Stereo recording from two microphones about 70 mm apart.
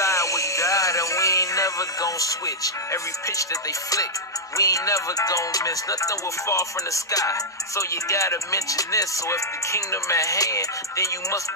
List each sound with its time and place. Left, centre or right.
0.0 s music: left
4.6 s music: left